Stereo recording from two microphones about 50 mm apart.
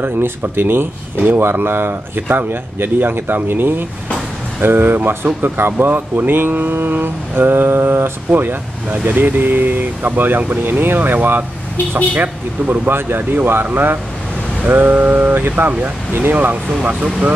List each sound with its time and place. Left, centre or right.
0.0 s speech: right
12.9 s speech: right
16.8 s speech: right